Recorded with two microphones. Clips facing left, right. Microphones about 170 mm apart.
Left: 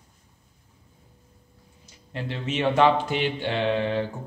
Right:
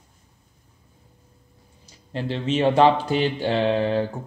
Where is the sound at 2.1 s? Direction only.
30° right (ahead or behind).